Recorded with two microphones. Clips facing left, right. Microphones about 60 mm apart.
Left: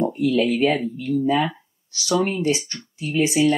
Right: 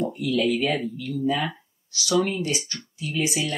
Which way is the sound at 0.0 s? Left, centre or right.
Left.